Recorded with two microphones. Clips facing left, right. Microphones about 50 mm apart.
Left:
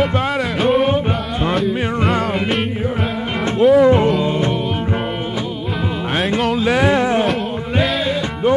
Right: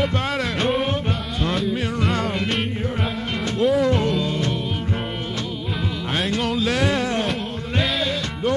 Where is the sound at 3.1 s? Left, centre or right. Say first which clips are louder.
Left 5 dB; centre.